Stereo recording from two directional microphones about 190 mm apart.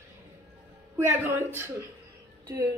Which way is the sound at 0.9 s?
15° right (ahead or behind).